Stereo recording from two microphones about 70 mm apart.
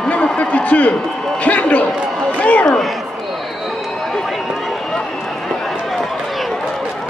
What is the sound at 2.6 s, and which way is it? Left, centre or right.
Speech, centre.